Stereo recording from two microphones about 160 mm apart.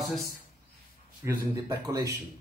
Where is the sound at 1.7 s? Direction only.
20° right (ahead or behind).